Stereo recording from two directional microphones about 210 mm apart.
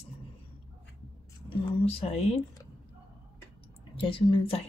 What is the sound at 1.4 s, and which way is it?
Speech, 30° left (ahead or behind).